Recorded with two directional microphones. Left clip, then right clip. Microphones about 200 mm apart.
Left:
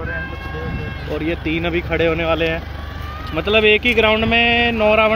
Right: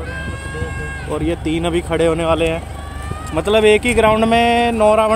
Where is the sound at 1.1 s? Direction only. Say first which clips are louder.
Right 1 dB; 15° right (ahead or behind).